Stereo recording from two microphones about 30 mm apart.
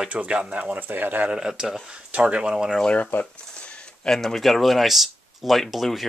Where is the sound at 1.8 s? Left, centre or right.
Right.